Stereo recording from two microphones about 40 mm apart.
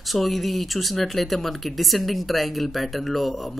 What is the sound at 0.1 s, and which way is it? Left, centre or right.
Speech, centre.